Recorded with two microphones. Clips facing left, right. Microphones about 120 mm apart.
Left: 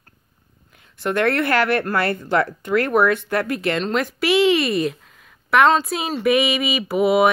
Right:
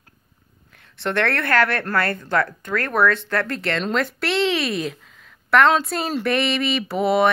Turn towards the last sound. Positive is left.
turn(degrees=10)  # may be behind; listen again after turning